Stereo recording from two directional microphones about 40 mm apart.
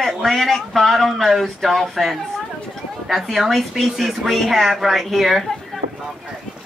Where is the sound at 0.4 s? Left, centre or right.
Centre.